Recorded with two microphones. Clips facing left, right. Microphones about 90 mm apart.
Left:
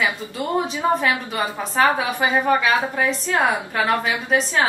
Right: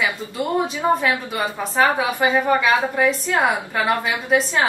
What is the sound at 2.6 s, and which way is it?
A woman's voice, centre (ahead or behind).